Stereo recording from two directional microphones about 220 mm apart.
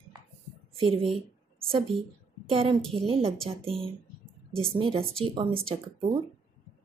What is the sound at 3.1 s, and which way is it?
A woman's voice, 25° right (ahead or behind).